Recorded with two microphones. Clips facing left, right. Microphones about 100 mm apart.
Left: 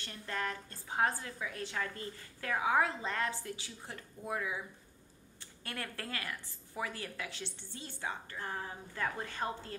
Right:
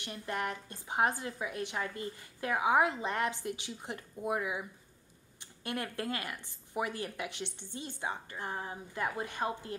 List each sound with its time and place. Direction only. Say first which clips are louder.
0.0 s a woman's voice: right 3 dB; 15° right (ahead or behind)